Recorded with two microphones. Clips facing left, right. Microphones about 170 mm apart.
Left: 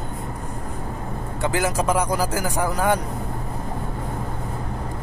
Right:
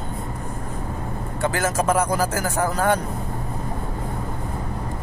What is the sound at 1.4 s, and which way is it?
Speech, 15° left (ahead or behind).